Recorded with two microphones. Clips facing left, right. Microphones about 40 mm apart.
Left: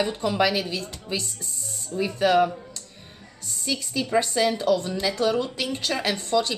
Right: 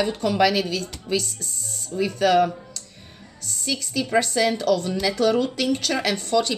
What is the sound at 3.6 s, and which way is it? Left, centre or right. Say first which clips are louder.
Speech: right 1 dB; centre.